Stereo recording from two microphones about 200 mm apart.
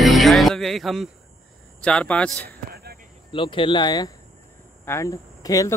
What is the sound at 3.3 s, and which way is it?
Speech, 25° left (ahead or behind).